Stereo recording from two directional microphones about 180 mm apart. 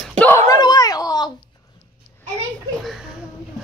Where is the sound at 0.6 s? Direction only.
20° left (ahead or behind).